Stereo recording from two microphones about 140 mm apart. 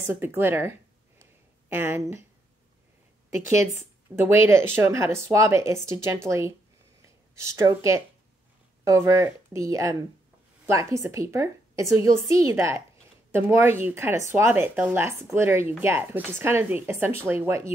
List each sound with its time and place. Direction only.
0.1 s speech: 15° right (ahead or behind)
4.1 s speech: 20° right (ahead or behind)